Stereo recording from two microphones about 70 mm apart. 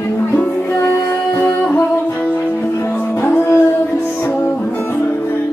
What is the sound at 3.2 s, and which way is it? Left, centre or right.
Music, left.